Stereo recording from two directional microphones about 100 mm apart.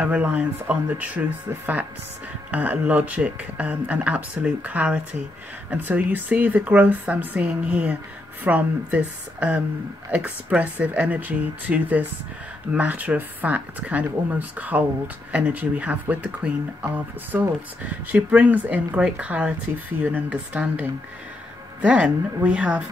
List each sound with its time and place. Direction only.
0.0 s speech: 15° right (ahead or behind)
2.5 s speech: 15° right (ahead or behind)